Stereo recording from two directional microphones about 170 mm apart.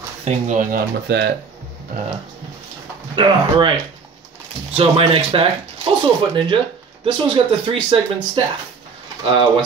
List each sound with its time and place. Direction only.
0.2 s speech: 45° right (ahead or behind); by 1.3 s 85° right
3.2 s speech: 25° right (ahead or behind)
4.7 s speech: 35° right (ahead or behind)